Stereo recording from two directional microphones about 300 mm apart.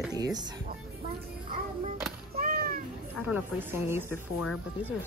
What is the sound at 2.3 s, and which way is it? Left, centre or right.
Cat, right.